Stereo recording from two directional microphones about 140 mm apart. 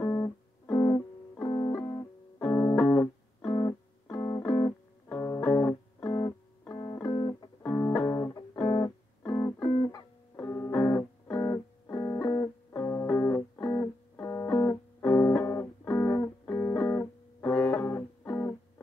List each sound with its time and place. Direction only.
0.0 s music: 20° left (ahead or behind)
2.4 s music: 15° left (ahead or behind); by 7.4 s 30° left (ahead or behind)
7.6 s music: 15° left (ahead or behind)